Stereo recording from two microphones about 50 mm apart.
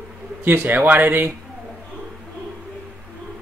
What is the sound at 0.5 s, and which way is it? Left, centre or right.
Speech, right.